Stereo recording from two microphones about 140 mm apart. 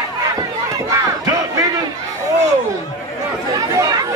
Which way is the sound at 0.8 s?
25° right (ahead or behind).